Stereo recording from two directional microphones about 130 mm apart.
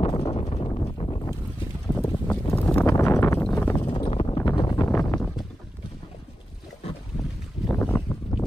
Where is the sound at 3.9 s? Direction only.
45° left (ahead or behind).